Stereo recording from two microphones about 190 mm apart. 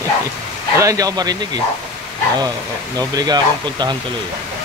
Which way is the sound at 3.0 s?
20° right (ahead or behind).